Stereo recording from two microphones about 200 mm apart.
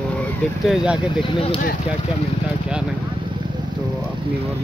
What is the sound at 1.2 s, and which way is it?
Speech, 25° left (ahead or behind).